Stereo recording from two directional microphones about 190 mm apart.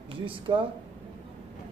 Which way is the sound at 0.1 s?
25° right (ahead or behind).